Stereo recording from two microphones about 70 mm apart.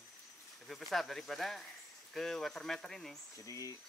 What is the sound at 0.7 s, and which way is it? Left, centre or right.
Speech, centre.